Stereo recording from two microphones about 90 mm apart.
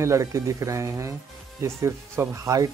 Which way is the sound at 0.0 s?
35° right (ahead or behind).